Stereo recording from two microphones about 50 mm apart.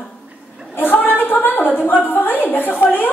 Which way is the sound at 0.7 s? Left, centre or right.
Left.